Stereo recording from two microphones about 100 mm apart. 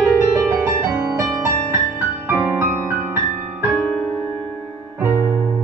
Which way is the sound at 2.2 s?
25° right (ahead or behind).